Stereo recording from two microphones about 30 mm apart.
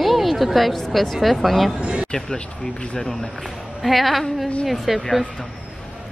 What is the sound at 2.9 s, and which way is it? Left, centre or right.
Speech, centre.